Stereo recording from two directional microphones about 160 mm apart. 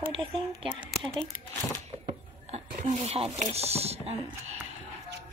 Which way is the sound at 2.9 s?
35° right (ahead or behind).